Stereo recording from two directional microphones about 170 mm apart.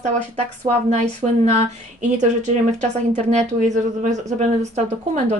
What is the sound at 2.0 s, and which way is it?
Speech, 45° right (ahead or behind).